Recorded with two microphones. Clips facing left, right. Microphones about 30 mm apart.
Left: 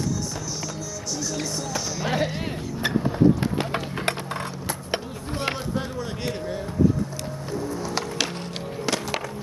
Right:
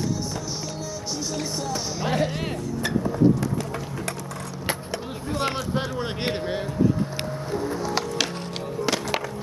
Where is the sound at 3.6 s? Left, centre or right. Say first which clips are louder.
Left 3 dB; left.